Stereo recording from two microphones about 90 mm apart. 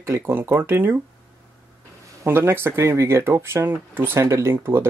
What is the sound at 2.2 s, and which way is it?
Speech, 25° right (ahead or behind).